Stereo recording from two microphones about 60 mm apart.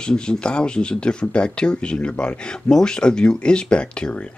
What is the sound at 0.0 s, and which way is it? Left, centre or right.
Speech, centre.